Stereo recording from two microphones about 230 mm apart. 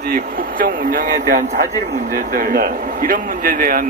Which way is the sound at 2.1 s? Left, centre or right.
Right.